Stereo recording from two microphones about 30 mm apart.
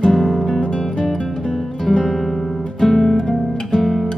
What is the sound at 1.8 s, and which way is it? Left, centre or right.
Music, left.